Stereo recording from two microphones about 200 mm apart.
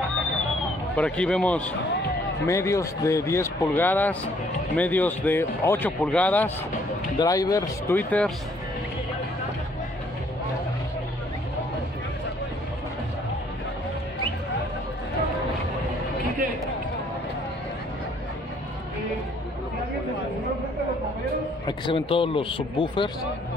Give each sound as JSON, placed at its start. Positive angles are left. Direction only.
{"t": 0.9, "sound": "speech", "side_deg": 5}
{"t": 7.2, "sound": "speech", "side_deg": 20}
{"t": 21.6, "sound": "speech", "side_deg": 25}